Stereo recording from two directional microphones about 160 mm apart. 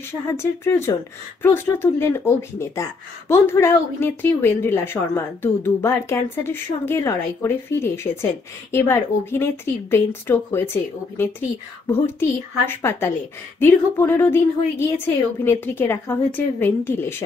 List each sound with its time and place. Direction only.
0.3 s speech: 15° left (ahead or behind)